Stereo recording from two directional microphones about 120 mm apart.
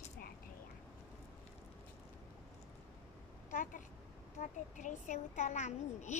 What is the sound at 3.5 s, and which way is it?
Vehicle, 90° left.